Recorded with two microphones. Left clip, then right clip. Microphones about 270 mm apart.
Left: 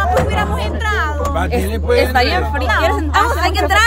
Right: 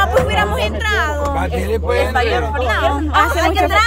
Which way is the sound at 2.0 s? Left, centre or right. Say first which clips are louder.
Left 3 dB; left.